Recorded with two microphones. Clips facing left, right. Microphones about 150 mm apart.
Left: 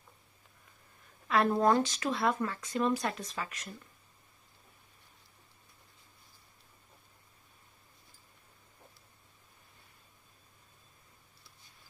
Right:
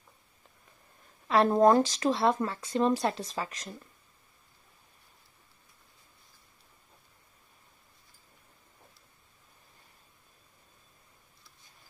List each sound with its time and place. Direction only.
1.3 s speech: 35° right (ahead or behind)